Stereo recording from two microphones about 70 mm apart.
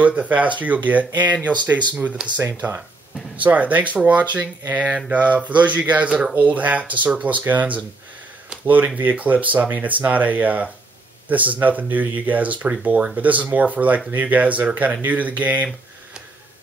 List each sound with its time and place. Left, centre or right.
0.0 s speech: right
2.2 s speech: centre